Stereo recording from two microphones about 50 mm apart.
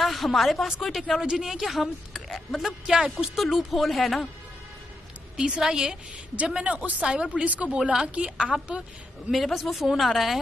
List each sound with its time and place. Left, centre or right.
0.0 s speech: centre
2.9 s a woman's voice: centre
3.3 s speech: centre
5.4 s a woman's voice: centre
6.5 s a woman's voice: right
9.3 s speech: centre